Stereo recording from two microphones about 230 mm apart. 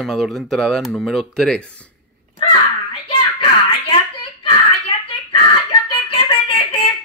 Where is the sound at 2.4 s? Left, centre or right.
Left.